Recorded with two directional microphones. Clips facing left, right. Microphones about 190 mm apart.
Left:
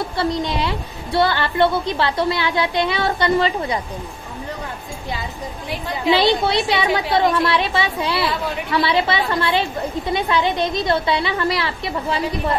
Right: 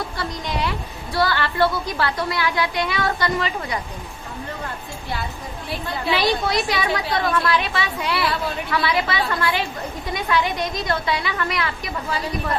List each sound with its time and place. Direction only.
0.1 s a woman's voice: 30° left (ahead or behind)
5.7 s a woman's voice: 15° left (ahead or behind)
6.1 s a woman's voice: 30° left (ahead or behind)